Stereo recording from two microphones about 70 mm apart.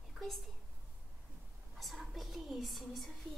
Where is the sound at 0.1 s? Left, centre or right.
Centre.